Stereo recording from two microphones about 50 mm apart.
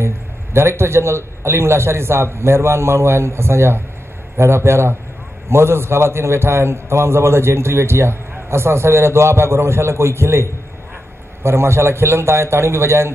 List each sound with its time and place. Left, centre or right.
0.0 s a man's voice: right